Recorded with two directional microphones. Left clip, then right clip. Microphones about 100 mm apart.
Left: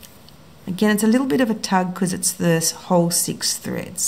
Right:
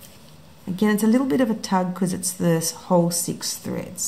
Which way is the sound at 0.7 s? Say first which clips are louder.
Left 2 dB; 35° left (ahead or behind).